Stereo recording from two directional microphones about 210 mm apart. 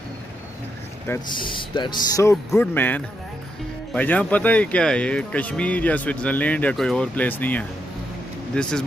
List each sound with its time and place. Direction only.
1.3 s speech: 25° left (ahead or behind); by 8.8 s 5° left (ahead or behind)